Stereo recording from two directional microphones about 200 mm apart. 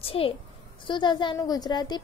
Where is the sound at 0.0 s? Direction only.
30° left (ahead or behind).